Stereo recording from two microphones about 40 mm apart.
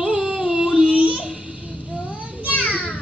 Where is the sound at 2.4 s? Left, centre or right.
Left.